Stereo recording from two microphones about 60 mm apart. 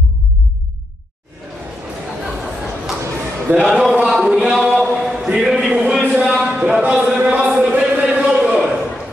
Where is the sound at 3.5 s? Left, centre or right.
Right.